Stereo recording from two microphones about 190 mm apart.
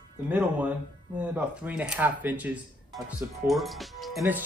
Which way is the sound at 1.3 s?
5° right (ahead or behind).